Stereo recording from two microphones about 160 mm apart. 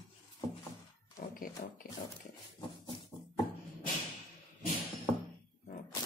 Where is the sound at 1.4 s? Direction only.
60° left (ahead or behind).